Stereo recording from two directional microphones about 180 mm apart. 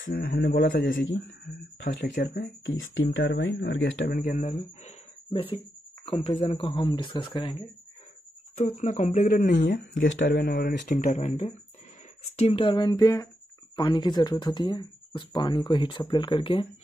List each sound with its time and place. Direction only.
0.1 s speech: 55° left (ahead or behind)
0.8 s speech: 90° left
1.2 s speech: 75° left (ahead or behind)
2.6 s speech: 90° left
4.1 s speech: 45° left (ahead or behind); by 7.5 s 25° left (ahead or behind)
8.5 s speech: 40° left (ahead or behind)
9.9 s speech: 90° left; by 11.0 s 75° left (ahead or behind)
11.1 s speech: 35° left (ahead or behind)